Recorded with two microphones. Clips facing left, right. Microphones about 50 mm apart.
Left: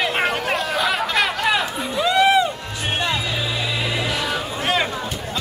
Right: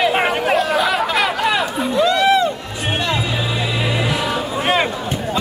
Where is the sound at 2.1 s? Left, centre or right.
Centre.